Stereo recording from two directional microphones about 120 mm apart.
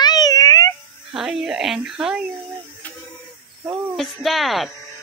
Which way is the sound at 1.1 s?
5° right (ahead or behind).